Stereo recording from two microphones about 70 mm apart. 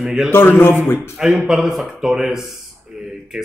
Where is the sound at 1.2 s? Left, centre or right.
Centre.